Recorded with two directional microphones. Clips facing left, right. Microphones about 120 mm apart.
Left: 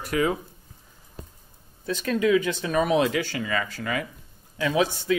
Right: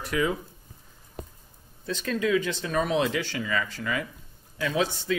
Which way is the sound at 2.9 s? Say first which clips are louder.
Left 3 dB; 60° left (ahead or behind).